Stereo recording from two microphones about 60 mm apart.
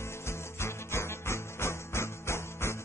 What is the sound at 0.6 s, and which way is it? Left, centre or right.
Music, left.